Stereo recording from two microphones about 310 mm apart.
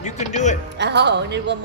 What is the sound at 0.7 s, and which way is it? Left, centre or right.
Music, right.